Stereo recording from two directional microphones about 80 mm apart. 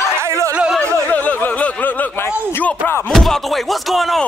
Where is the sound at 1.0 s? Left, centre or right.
Left.